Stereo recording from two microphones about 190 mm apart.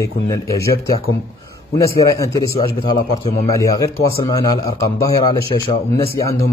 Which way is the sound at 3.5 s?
20° left (ahead or behind).